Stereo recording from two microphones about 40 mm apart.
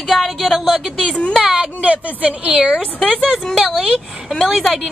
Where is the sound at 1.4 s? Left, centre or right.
Centre.